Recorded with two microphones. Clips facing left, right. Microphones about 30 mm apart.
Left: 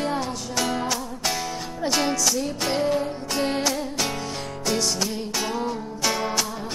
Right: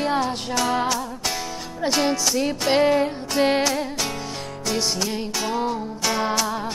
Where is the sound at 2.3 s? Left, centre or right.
Right.